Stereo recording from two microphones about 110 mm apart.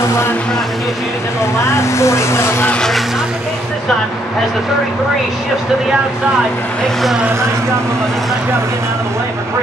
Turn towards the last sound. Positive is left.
turn(degrees=-25)  # may be behind; listen again after turning